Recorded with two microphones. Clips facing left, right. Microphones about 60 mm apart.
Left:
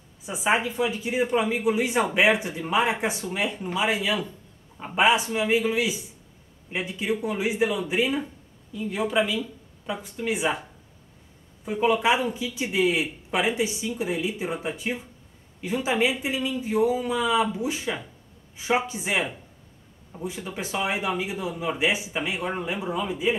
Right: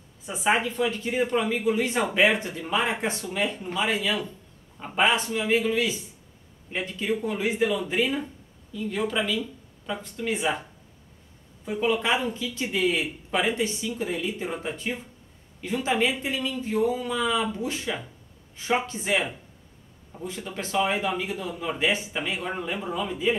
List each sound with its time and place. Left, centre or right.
0.2 s a man's voice: centre
11.6 s a man's voice: centre